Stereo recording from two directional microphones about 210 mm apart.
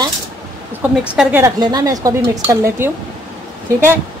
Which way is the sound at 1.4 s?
20° right (ahead or behind).